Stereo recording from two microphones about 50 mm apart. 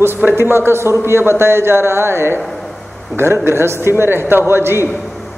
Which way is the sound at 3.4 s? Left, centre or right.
Right.